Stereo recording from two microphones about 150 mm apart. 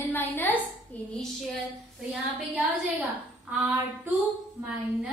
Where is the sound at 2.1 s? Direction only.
Centre (ahead or behind).